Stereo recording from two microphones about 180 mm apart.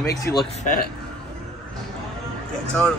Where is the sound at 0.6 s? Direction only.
50° left (ahead or behind).